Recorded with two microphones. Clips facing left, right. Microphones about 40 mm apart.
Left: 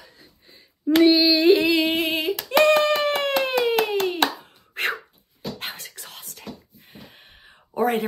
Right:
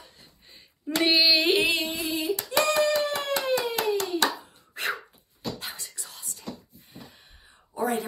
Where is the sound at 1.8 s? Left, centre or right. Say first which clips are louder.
Left 6 dB; left.